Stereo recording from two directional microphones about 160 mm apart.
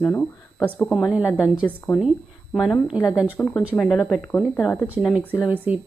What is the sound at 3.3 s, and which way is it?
Speech, 10° left (ahead or behind).